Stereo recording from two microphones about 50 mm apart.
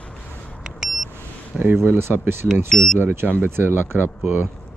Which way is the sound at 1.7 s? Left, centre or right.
Right.